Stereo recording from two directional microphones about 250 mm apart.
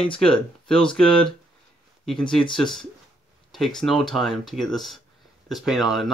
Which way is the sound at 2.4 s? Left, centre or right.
Centre.